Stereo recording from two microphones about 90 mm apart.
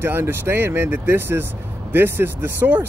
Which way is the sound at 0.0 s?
25° right (ahead or behind).